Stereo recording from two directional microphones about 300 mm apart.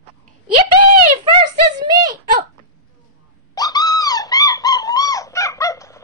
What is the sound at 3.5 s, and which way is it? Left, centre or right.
Bird, centre.